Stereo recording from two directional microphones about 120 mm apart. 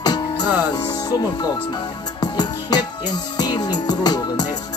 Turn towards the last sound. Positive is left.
turn(degrees=35)  # may be behind; listen again after turning